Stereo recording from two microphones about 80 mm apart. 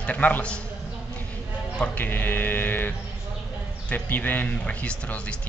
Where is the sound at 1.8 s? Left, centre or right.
Left.